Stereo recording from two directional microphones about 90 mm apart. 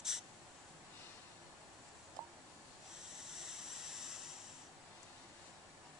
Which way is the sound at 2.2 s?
25° right (ahead or behind).